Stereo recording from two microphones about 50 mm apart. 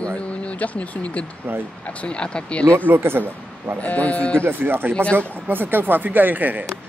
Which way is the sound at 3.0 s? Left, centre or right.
Right.